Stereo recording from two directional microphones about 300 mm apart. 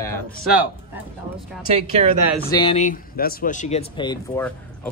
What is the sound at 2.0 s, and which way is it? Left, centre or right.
Speech, right.